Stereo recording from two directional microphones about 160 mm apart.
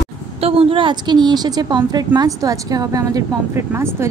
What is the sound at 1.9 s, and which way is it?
A woman's voice, 25° right (ahead or behind).